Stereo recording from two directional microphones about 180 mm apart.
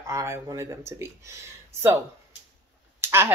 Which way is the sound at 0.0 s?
15° right (ahead or behind).